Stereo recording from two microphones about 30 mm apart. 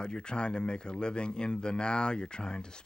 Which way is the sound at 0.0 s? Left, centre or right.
Left.